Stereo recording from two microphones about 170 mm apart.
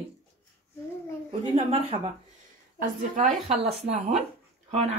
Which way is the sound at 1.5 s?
35° right (ahead or behind).